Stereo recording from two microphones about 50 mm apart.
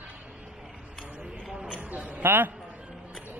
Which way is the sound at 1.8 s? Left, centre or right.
Right.